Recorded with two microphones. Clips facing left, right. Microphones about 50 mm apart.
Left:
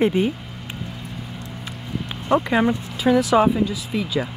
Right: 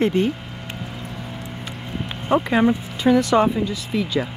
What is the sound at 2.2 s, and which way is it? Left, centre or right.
Speech, centre.